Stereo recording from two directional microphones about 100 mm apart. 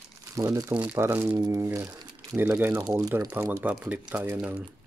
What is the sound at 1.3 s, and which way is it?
Speech, 30° right (ahead or behind).